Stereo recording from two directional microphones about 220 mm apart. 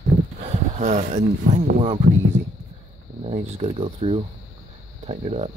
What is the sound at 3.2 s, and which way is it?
Speech, 30° right (ahead or behind).